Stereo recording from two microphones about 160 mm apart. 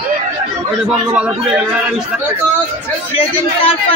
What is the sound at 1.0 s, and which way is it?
Speech, 5° right (ahead or behind).